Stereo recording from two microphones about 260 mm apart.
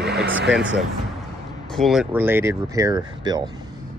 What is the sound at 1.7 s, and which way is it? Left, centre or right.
Speech, centre.